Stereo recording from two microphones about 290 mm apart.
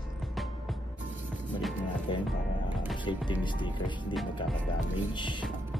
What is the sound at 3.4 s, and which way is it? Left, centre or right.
Speech, centre.